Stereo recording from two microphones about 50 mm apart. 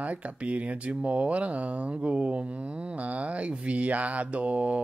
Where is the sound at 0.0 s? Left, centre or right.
Right.